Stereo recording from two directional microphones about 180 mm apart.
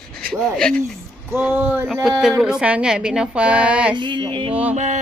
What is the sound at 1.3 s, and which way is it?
A woman's voice, 10° right (ahead or behind).